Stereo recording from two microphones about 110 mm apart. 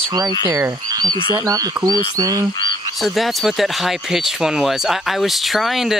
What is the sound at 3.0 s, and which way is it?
Speech, centre (ahead or behind).